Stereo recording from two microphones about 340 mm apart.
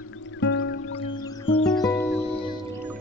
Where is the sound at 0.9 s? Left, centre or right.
Centre.